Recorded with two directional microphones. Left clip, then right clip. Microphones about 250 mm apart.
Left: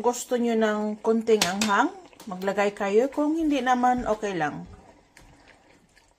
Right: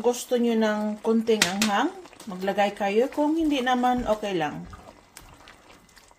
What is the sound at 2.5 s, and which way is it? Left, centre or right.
A woman's voice, centre.